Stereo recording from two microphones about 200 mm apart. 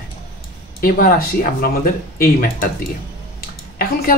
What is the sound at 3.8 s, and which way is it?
Speech, 45° left (ahead or behind).